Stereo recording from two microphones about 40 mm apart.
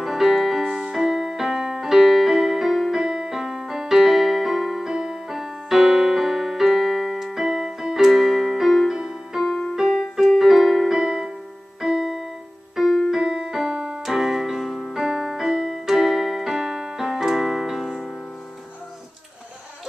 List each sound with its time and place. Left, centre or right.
0.0 s keyboard: centre
3.0 s keyboard: centre
4.8 s keyboard: centre
8.9 s music: centre
9.5 s music: left
9.8 s keyboard: centre
11.0 s keyboard: centre
12.7 s keyboard: centre
13.1 s music: centre
13.5 s keyboard: centre